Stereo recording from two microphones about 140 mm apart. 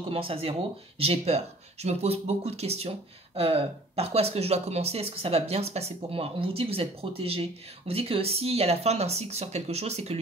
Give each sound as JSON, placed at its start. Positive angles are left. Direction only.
{"t": 0.1, "sound": "speech", "side_deg": -40}